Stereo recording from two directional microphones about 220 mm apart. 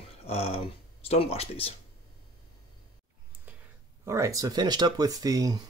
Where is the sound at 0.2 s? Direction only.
25° left (ahead or behind).